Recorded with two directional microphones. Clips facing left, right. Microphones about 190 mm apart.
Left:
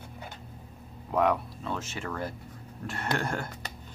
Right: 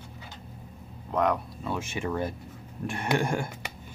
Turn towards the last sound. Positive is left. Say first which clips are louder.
# right 4 dB
turn(degrees=-10)  # may be behind; listen again after turning